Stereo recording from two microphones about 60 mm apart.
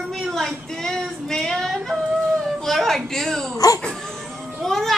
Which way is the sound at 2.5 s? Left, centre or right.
Centre.